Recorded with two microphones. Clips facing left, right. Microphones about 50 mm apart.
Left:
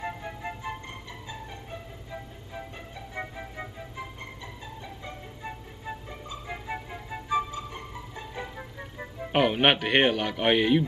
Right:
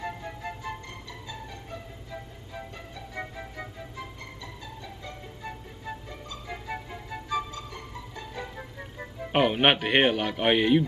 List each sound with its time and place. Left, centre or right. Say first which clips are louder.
0.2 s music: left 1 dB; centre
3.2 s music: left 1 dB; centre
7.2 s music: left 4 dB; left
8.9 s speech: even; centre